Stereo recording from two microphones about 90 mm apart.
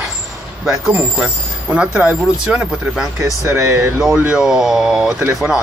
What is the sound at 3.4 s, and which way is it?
Speech, 30° right (ahead or behind).